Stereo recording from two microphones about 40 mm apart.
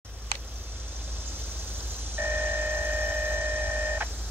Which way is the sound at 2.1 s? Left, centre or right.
Right.